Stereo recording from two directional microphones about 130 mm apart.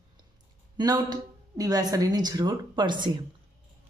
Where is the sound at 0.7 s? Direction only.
30° right (ahead or behind).